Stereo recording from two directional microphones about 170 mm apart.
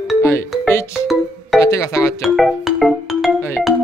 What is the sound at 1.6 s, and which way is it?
Speech, 20° left (ahead or behind).